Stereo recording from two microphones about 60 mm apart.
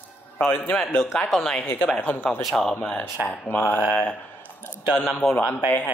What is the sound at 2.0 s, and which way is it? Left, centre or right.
Speech, left.